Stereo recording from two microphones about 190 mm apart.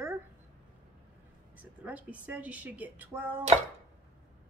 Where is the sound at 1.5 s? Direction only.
10° right (ahead or behind).